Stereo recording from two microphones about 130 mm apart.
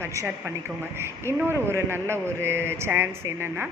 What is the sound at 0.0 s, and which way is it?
Speech, 20° right (ahead or behind).